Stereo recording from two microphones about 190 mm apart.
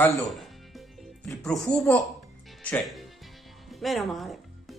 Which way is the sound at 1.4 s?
5° left (ahead or behind).